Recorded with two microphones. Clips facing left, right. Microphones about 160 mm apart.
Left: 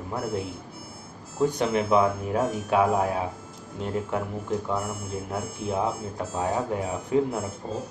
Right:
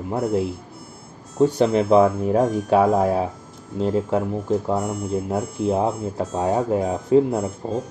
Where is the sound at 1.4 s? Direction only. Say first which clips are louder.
Right 6 dB; 35° right (ahead or behind).